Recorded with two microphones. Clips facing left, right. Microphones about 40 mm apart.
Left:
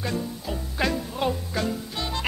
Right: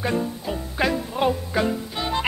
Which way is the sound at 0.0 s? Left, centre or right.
Right.